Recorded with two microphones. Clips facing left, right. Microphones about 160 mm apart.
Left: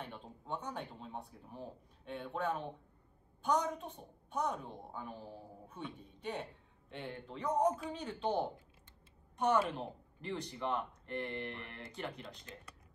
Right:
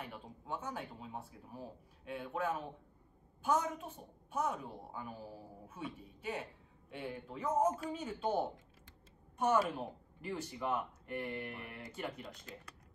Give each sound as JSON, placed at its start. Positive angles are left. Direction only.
{"t": 0.0, "sound": "a woman's voice", "side_deg": -5}